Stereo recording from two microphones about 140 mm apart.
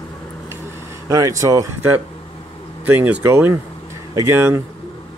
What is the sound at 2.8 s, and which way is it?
Speech, 10° right (ahead or behind).